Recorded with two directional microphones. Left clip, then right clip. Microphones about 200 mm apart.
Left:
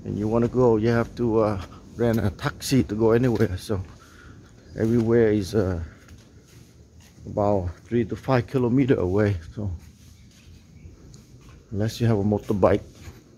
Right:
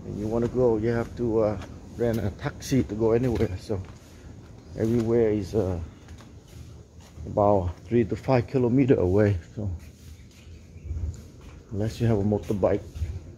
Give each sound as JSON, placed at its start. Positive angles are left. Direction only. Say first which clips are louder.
{"t": 0.3, "sound": "speech", "louder": "left 3 dB", "side_deg": 45}
{"t": 5.0, "sound": "speech", "louder": "left 4 dB", "side_deg": 35}
{"t": 7.3, "sound": "speech", "louder": "right 2 dB", "side_deg": 10}
{"t": 11.8, "sound": "speech", "louder": "left 2 dB", "side_deg": 20}
{"t": 12.5, "sound": "speech", "louder": "left 5 dB", "side_deg": 35}